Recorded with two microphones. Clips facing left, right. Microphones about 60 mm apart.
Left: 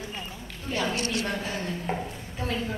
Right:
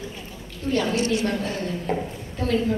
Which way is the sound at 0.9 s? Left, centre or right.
Left.